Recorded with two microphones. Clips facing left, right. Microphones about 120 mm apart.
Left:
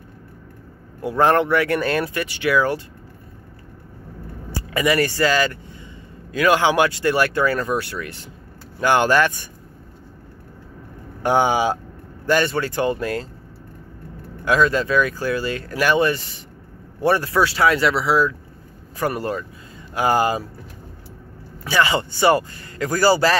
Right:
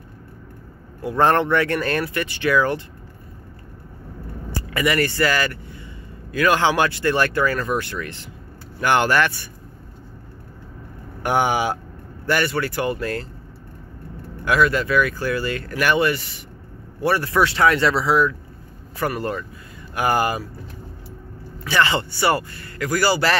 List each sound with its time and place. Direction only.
1.1 s speech: 10° left (ahead or behind)
4.7 s speech: 20° left (ahead or behind)
11.2 s a man's voice: 20° left (ahead or behind)
14.4 s a man's voice: 20° left (ahead or behind)
17.4 s a man's voice: 10° left (ahead or behind)
21.6 s a man's voice: 15° left (ahead or behind)